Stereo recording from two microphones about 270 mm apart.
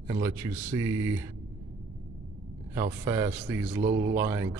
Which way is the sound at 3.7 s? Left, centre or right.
Right.